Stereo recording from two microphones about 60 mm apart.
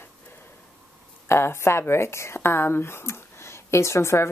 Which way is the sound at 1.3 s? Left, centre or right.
Left.